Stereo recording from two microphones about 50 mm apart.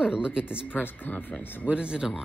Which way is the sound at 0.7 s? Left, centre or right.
Left.